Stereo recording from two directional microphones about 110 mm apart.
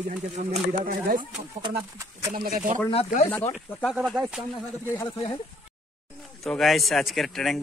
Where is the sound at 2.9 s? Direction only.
65° left (ahead or behind).